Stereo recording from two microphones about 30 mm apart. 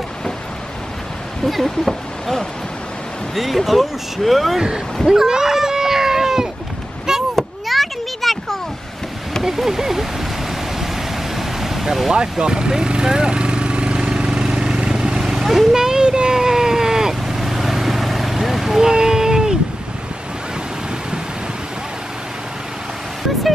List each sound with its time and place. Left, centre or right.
1.4 s speech: centre
3.3 s speech: centre
4.6 s speech: right
5.1 s a sound: centre
7.6 s a sound: centre
9.4 s speech: centre
11.3 s vehicle: centre
12.1 s speech: right
13.9 s vehicle: centre
15.2 s vehicle: centre
15.7 s sheep: right
18.8 s music: right